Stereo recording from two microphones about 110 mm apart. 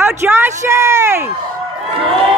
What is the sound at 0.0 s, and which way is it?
Speech, 20° right (ahead or behind).